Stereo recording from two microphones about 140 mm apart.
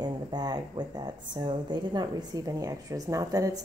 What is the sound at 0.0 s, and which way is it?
A woman's voice, 30° right (ahead or behind).